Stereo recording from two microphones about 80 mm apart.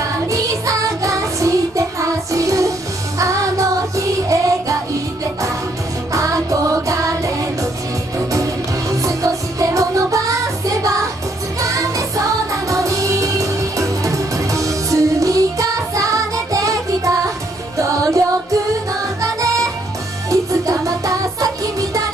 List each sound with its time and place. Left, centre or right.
0.3 s music: right
6.1 s music: right
8.9 s music: right
12.6 s music: right
19.2 s music: right